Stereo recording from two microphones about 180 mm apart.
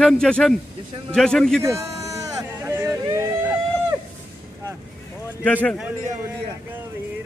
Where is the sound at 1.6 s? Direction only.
15° right (ahead or behind).